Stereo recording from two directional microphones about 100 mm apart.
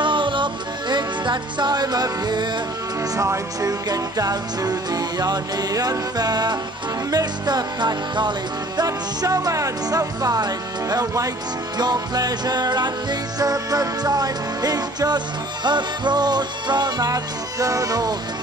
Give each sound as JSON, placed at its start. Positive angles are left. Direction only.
{"t": 0.0, "sound": "music", "side_deg": -55}